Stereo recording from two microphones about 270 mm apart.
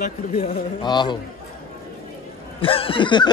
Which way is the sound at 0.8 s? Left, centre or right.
Centre.